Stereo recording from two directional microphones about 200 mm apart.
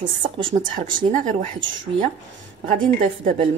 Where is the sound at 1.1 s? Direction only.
35° right (ahead or behind).